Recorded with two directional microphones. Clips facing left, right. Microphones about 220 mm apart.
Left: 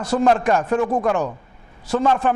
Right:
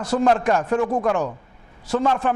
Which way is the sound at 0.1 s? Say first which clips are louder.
Left 1 dB; 15° left (ahead or behind).